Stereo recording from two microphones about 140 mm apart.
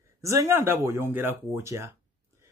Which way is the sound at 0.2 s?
20° right (ahead or behind).